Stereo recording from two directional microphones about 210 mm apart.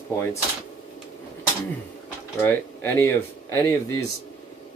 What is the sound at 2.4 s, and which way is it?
Speech, 10° left (ahead or behind).